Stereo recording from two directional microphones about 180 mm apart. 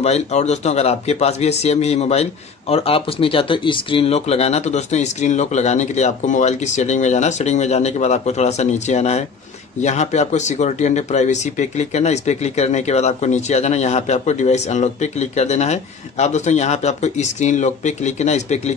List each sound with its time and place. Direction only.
0.0 s speech: 35° left (ahead or behind)